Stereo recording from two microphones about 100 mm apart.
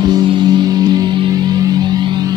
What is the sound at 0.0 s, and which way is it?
Music, 45° right (ahead or behind).